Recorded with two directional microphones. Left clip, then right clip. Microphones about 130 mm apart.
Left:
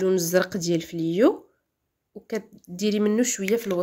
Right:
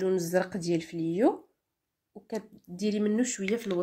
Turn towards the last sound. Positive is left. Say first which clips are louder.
# left 6 dB
turn(degrees=35)  # may be behind; listen again after turning